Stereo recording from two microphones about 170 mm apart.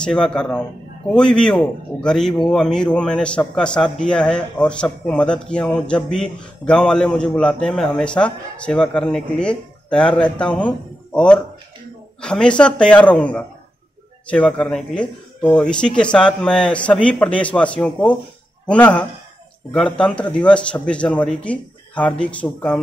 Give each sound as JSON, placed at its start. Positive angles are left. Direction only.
{"t": 0.0, "sound": "speech", "side_deg": 5}